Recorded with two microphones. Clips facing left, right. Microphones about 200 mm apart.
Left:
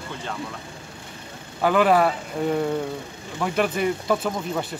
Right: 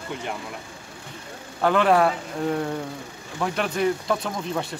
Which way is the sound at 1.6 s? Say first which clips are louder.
Left 1 dB; 5° left (ahead or behind).